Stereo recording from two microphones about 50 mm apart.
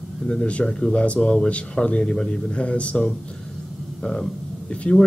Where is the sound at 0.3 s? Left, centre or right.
Left.